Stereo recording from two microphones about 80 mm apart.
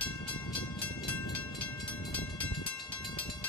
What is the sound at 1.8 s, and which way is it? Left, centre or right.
Train, centre.